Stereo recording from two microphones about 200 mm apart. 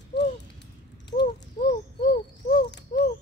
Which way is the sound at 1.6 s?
45° left (ahead or behind).